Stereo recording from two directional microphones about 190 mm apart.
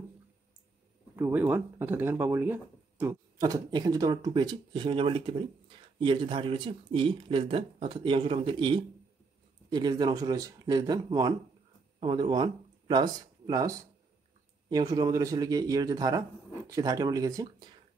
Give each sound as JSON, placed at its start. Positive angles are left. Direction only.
{"t": 1.1, "sound": "speech", "side_deg": -10}